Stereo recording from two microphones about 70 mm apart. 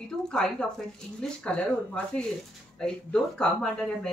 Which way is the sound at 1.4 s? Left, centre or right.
Centre.